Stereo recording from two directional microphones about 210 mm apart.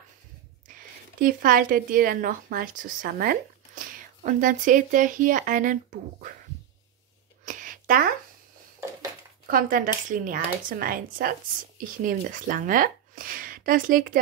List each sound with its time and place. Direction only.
1.2 s a woman's voice: 40° right (ahead or behind)
7.4 s a sound: 40° right (ahead or behind)
9.5 s a woman's voice: 40° right (ahead or behind)